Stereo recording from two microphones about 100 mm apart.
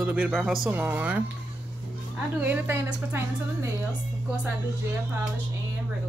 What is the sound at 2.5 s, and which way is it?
A woman's voice, 25° right (ahead or behind).